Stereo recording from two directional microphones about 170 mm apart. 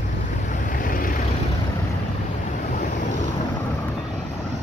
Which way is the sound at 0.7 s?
55° left (ahead or behind).